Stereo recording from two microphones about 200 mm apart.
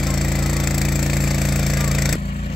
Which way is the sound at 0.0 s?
Centre (ahead or behind).